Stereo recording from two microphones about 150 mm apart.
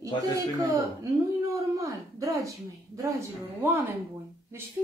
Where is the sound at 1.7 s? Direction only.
20° right (ahead or behind).